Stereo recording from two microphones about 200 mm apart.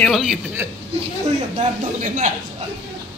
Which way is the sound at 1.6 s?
40° right (ahead or behind).